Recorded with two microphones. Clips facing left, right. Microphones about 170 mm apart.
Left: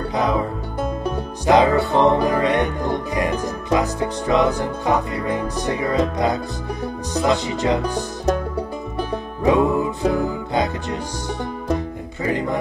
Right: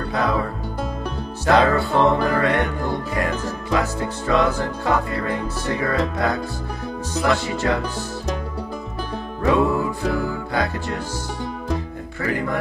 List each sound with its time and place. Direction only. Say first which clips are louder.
0.1 s music: left 1 dB; 15° left (ahead or behind)
7.2 s speech: left 2 dB; 20° left (ahead or behind)
9.4 s music: left 2 dB; 20° left (ahead or behind)
12.2 s speech: left 2 dB; 20° left (ahead or behind)